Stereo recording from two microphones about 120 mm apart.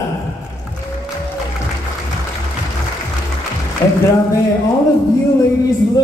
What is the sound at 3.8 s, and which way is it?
Speech, 30° left (ahead or behind).